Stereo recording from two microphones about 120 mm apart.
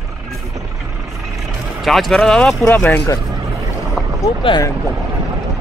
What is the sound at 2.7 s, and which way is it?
Speech, 20° left (ahead or behind).